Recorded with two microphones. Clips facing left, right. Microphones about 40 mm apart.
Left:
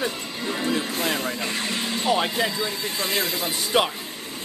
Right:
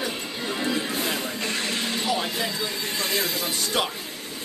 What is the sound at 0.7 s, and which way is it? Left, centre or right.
Music, left.